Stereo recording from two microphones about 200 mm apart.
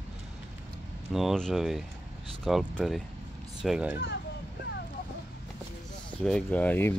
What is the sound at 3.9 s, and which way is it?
Speech, 60° left (ahead or behind).